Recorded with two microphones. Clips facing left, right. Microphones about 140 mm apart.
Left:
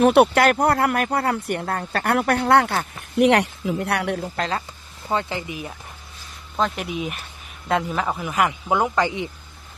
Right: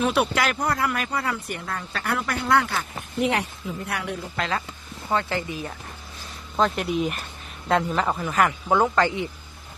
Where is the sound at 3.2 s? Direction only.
75° left (ahead or behind).